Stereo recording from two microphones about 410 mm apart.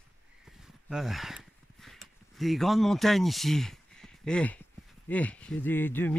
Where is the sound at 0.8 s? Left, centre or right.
Centre.